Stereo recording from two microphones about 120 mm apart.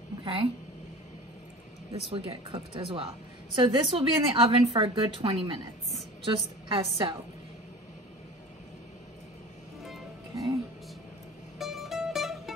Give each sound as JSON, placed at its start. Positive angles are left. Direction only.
{"t": 0.2, "sound": "a woman's voice", "side_deg": -50}
{"t": 1.9, "sound": "a woman's voice", "side_deg": -50}
{"t": 11.5, "sound": "music", "side_deg": 0}